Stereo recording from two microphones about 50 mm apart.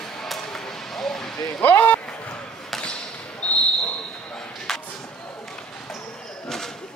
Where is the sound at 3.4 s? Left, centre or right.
Left.